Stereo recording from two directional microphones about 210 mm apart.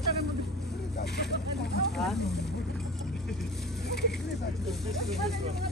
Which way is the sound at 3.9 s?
50° left (ahead or behind).